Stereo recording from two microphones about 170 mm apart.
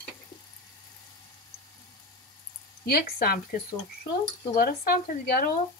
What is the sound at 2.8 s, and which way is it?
Speech, 60° left (ahead or behind).